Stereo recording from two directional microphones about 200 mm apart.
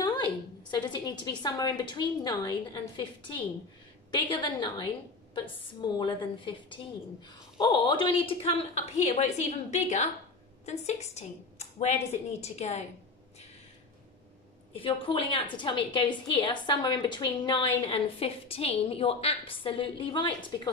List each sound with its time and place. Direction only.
0.0 s a woman's voice: 20° left (ahead or behind)
14.8 s a woman's voice: 25° left (ahead or behind)